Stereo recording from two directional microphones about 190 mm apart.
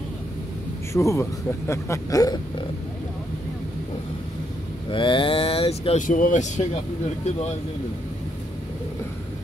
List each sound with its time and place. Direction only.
0.9 s speech: 15° left (ahead or behind)
4.9 s speech: 25° left (ahead or behind)